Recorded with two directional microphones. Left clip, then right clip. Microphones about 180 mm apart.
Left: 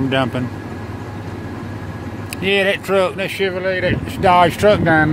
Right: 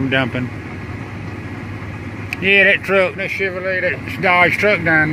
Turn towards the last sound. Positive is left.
turn(degrees=20)  # may be behind; listen again after turning